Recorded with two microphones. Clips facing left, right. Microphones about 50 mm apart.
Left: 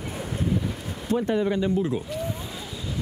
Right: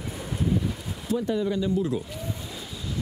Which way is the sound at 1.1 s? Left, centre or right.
Left.